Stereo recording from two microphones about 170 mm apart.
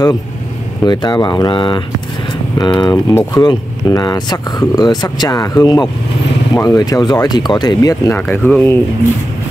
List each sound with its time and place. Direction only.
0.8 s speech: 25° left (ahead or behind); by 8.7 s 10° left (ahead or behind)